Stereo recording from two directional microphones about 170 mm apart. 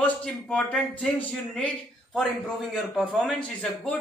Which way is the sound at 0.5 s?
5° left (ahead or behind).